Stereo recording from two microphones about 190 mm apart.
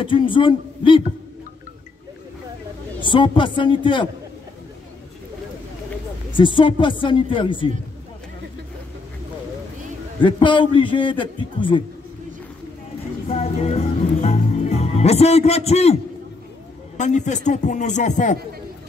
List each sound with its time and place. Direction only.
0.0 s a man's voice: 25° left (ahead or behind)
3.0 s a man's voice: 25° left (ahead or behind)
6.3 s a man's voice: 25° left (ahead or behind)
10.2 s a man's voice: 25° left (ahead or behind)
13.3 s music: 35° left (ahead or behind)
16.9 s a man's voice: 40° left (ahead or behind)